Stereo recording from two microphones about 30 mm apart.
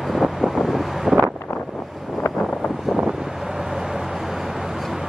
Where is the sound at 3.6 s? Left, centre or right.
Centre.